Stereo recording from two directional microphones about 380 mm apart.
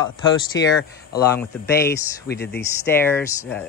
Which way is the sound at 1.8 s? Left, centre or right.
Left.